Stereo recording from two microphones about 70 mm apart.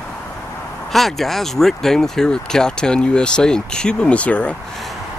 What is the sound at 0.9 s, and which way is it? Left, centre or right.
Speech, centre.